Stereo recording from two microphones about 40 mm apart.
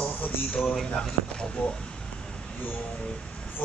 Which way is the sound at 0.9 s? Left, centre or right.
Left.